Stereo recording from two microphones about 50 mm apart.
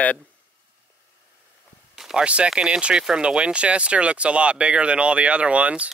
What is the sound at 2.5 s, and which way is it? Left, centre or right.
Speech, right.